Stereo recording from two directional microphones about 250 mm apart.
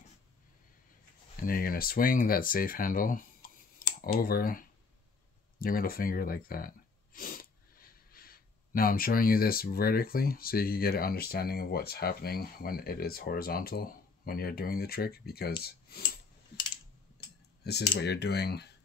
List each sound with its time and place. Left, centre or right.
1.3 s speech: left
3.8 s a sound: left
4.2 s speech: left
17.6 s speech: left